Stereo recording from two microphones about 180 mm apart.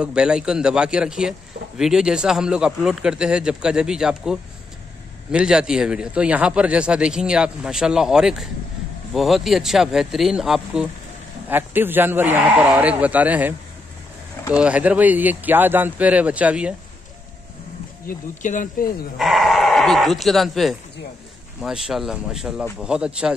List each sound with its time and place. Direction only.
0.0 s speech: 5° right (ahead or behind)
18.0 s speech: 45° left (ahead or behind)
19.1 s speech: centre (ahead or behind)